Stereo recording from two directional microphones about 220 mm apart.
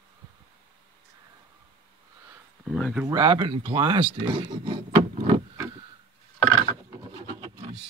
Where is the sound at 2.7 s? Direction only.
5° left (ahead or behind).